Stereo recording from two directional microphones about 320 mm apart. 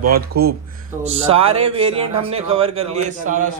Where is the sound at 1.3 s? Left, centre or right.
Centre.